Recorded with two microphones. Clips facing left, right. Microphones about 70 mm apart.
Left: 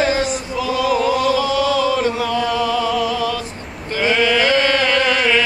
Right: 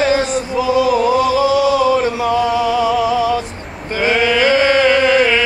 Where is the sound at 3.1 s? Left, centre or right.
Centre.